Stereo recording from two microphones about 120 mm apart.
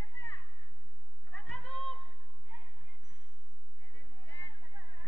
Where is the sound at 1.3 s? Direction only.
10° left (ahead or behind).